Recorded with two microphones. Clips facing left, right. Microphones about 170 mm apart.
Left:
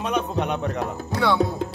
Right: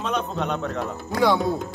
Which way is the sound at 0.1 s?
15° left (ahead or behind).